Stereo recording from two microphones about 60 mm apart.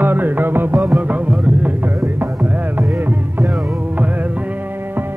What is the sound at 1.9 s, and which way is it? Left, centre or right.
Music, right.